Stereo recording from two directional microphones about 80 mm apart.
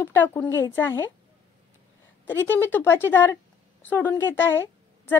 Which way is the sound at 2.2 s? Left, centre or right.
Left.